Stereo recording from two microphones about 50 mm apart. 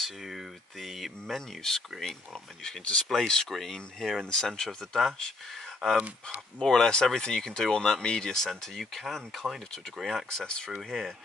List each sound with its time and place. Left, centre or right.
0.0 s speech: centre
6.6 s speech: centre
10.8 s speech: centre